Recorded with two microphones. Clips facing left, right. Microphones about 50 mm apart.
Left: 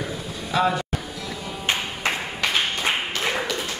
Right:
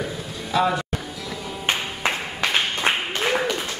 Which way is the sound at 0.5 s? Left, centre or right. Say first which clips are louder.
Right 1 dB; centre.